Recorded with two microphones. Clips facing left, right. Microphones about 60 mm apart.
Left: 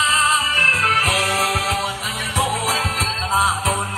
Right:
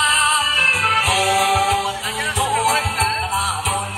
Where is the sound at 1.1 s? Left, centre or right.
Left.